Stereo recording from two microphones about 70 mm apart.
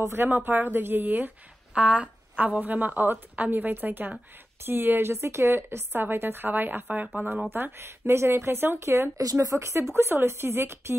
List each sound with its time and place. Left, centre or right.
0.1 s a woman's voice: right
1.7 s a woman's voice: centre; by 9.1 s right
9.2 s a woman's voice: right